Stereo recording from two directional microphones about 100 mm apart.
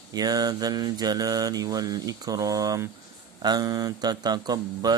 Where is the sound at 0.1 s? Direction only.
40° right (ahead or behind).